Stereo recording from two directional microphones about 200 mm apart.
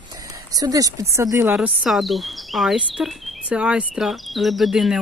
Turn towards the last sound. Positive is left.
turn(degrees=0)  # may be behind; listen again after turning